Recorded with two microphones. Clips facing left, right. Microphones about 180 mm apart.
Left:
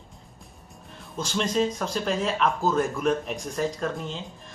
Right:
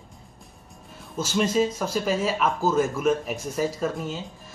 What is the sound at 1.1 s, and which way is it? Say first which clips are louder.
Speech: right 3 dB; 5° right (ahead or behind).